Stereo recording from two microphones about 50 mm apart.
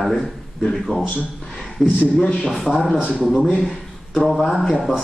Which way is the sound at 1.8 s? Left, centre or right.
Centre.